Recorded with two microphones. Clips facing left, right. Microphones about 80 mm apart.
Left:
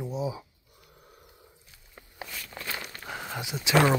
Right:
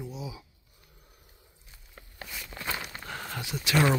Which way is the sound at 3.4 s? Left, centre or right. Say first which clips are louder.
Left 1 dB; centre.